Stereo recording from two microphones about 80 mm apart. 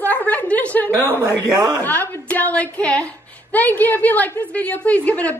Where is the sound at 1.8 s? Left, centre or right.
Left.